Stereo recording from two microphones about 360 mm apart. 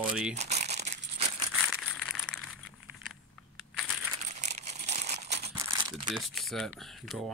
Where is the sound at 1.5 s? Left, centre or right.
Centre.